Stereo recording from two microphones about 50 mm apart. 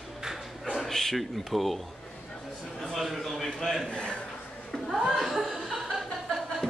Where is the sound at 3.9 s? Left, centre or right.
Centre.